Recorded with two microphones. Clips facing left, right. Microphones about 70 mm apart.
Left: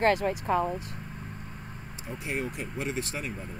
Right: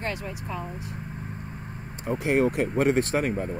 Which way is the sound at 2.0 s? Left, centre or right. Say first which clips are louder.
Right 11 dB; right.